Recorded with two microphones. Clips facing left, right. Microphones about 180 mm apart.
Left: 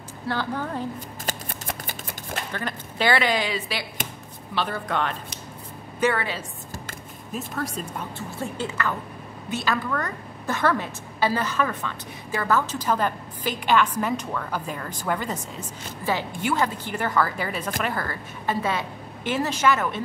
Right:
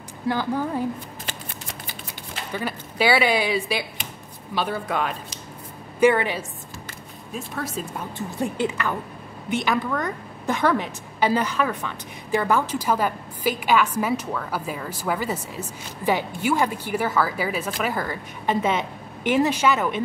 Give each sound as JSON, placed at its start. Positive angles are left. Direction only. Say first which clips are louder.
{"t": 0.3, "sound": "a woman's voice", "louder": "right 4 dB", "side_deg": -10}
{"t": 1.2, "sound": "shuffling cards", "louder": "left 4 dB", "side_deg": 50}
{"t": 2.5, "sound": "a woman's voice", "louder": "right 3 dB", "side_deg": -10}
{"t": 7.3, "sound": "speech", "louder": "even", "side_deg": 0}
{"t": 8.4, "sound": "a woman's voice", "louder": "right 4 dB", "side_deg": -15}